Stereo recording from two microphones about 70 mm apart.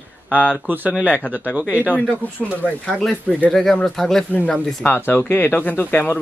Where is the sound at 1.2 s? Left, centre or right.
Centre.